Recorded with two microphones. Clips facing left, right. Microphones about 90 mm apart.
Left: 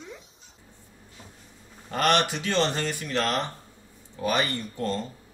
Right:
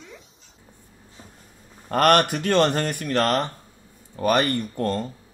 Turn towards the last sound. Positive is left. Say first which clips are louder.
# right 4 dB
turn(degrees=-55)  # may be behind; listen again after turning